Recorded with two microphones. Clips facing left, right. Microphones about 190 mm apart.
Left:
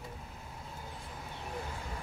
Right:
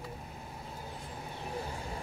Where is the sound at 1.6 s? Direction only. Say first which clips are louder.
Right 2 dB; 30° right (ahead or behind).